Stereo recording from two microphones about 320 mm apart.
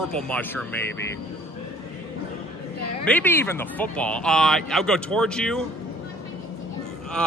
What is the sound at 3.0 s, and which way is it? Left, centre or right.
Speech, centre.